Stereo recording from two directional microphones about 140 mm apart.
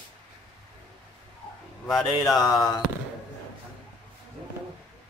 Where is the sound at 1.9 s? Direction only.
Centre (ahead or behind).